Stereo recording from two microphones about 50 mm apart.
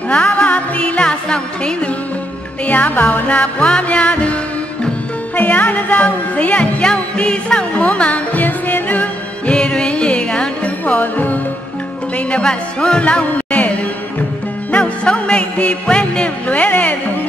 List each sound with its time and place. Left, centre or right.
0.1 s music: left
2.6 s music: left
9.6 s music: centre; by 11.3 s left
12.3 s music: centre
14.8 s music: centre